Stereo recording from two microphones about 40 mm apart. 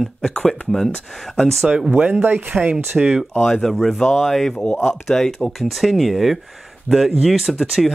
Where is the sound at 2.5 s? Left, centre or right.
Right.